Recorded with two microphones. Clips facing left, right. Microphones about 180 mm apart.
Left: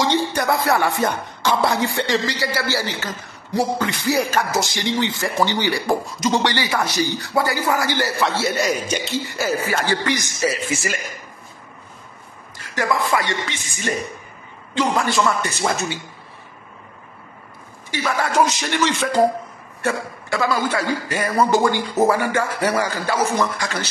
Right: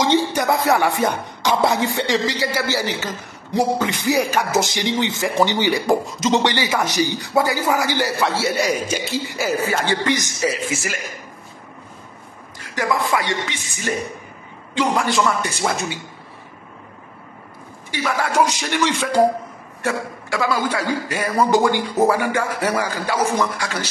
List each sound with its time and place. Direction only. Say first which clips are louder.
0.0 s speech: right 2 dB; 15° right (ahead or behind)
10.7 s a man's voice: left 1 dB; centre (ahead or behind)
12.7 s speech: even; 10° right (ahead or behind)
18.0 s speech: even; 10° right (ahead or behind)